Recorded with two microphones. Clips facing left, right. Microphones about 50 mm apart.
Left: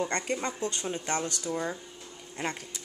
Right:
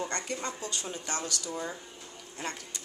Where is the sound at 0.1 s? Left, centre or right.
Left.